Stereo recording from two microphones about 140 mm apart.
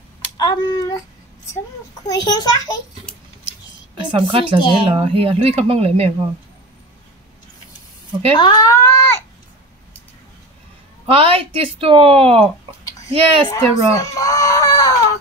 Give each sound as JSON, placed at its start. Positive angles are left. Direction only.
{"t": 0.4, "sound": "a child's voice", "side_deg": 30}
{"t": 2.0, "sound": "a child's voice", "side_deg": 30}
{"t": 4.1, "sound": "a woman's voice", "side_deg": -40}
{"t": 4.6, "sound": "speech", "side_deg": 35}
{"t": 4.8, "sound": "speech", "side_deg": -45}
{"t": 8.4, "sound": "a sound", "side_deg": 30}
{"t": 11.1, "sound": "a woman's voice", "side_deg": -45}
{"t": 13.6, "sound": "speech", "side_deg": 20}